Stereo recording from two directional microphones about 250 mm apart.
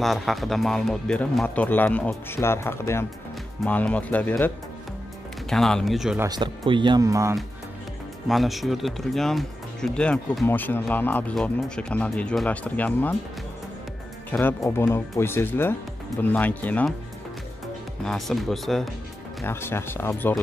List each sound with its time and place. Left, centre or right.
0.0 s speech: centre
5.5 s speech: centre
6.2 s speech: centre
8.3 s speech: centre
14.3 s speech: centre
18.0 s speech: centre